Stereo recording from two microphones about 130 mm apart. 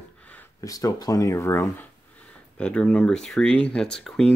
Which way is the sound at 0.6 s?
30° left (ahead or behind).